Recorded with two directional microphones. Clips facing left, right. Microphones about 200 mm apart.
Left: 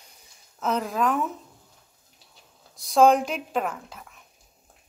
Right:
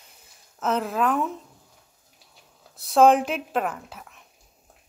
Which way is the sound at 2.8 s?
Centre (ahead or behind).